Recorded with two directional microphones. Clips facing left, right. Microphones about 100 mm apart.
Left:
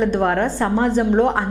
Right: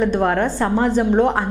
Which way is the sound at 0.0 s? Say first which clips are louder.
Even; 20° right (ahead or behind).